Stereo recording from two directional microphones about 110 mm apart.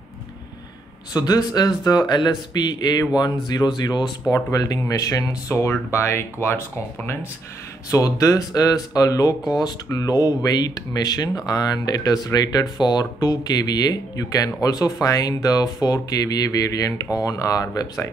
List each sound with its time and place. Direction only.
1.1 s speech: 35° left (ahead or behind)
7.9 s speech: 30° left (ahead or behind)